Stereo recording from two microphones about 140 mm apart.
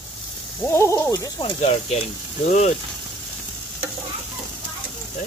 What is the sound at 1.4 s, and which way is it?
Speech, 50° left (ahead or behind).